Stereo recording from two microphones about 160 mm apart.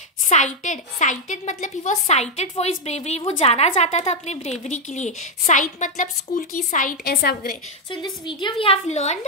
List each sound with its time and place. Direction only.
0.3 s a woman's voice: 45° left (ahead or behind); by 7.5 s 70° left (ahead or behind)
7.9 s a woman's voice: 30° left (ahead or behind); by 9.2 s 45° left (ahead or behind)